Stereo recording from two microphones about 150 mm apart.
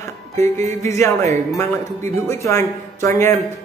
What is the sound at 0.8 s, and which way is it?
Speech, 20° left (ahead or behind).